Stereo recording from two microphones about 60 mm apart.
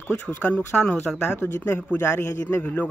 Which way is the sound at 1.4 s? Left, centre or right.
Left.